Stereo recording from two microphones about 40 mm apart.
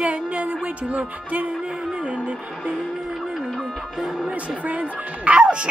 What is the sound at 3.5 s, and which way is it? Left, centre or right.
Music, centre.